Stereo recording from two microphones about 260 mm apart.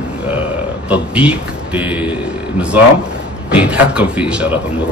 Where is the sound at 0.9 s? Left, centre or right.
Centre.